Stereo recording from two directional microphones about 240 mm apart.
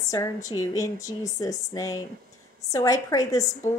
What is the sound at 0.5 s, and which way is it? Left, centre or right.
A woman's voice, centre.